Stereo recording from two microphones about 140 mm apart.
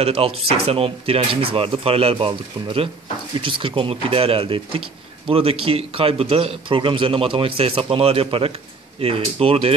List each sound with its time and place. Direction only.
0.0 s a man's voice: 45° right (ahead or behind)